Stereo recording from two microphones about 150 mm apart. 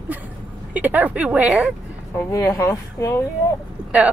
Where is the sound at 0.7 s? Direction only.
10° right (ahead or behind).